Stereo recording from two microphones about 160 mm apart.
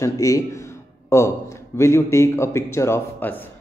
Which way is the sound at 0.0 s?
20° left (ahead or behind).